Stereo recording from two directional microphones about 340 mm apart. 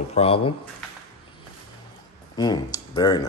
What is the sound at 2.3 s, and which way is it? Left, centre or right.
Speech, centre.